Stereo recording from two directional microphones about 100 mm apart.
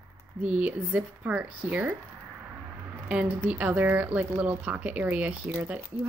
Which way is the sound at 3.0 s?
10° right (ahead or behind).